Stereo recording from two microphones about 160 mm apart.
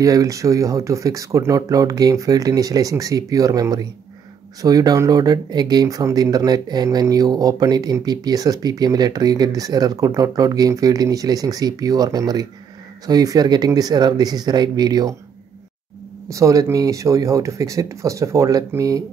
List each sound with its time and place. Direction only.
0.0 s speech: 20° right (ahead or behind)
16.3 s speech: 20° right (ahead or behind)